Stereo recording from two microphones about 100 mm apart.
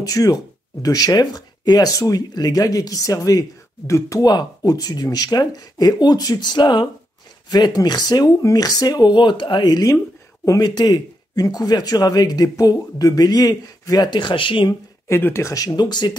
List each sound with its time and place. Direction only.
0.0 s speech: 35° left (ahead or behind); by 14.7 s 55° left (ahead or behind)
14.7 s speech: 25° left (ahead or behind); by 16.2 s 45° left (ahead or behind)